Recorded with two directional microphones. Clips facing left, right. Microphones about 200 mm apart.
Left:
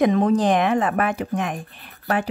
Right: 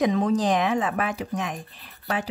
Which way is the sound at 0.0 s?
55° left (ahead or behind).